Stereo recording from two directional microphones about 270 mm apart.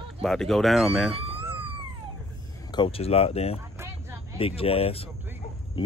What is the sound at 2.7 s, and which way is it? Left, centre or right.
Speech, centre.